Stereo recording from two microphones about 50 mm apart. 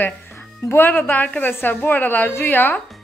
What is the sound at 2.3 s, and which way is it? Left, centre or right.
Speech, left.